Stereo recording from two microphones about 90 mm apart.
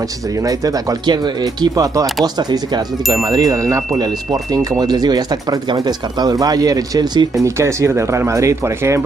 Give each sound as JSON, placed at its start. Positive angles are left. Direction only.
{"t": 0.4, "sound": "speech", "side_deg": -40}
{"t": 4.0, "sound": "speech", "side_deg": -50}
{"t": 7.4, "sound": "speech", "side_deg": -30}